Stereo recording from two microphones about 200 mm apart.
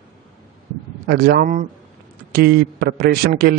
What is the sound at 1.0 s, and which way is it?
A man's voice, 50° right (ahead or behind).